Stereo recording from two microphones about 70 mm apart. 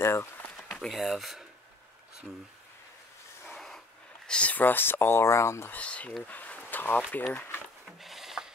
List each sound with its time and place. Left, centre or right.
0.0 s speech: left
0.8 s speech: centre
3.4 s snort: centre
4.3 s speech: centre; by 5.7 s left
5.7 s speech: centre
6.2 s a sound: left
8.0 s a sound: centre